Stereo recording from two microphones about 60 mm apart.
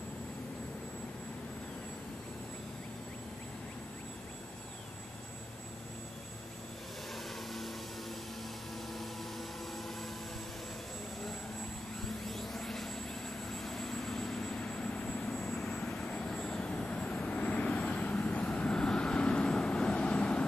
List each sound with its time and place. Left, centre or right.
7.2 s vehicle: centre
8.9 s vehicle: centre
12.0 s vehicle: centre
16.6 s vehicle: centre